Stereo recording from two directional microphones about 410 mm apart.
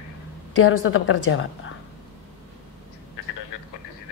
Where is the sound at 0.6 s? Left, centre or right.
Left.